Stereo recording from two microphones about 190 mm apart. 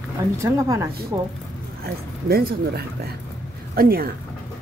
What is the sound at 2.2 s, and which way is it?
Speech, 55° right (ahead or behind).